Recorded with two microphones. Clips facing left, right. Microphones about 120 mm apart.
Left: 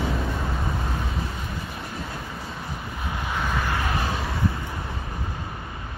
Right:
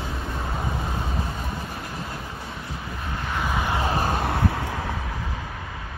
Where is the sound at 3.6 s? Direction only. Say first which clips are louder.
Right 2 dB; 20° right (ahead or behind).